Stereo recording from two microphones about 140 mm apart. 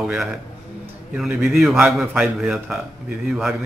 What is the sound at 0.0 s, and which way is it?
A man's voice, 5° right (ahead or behind).